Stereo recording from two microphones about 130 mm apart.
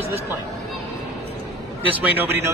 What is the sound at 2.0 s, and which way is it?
Speech, 15° right (ahead or behind).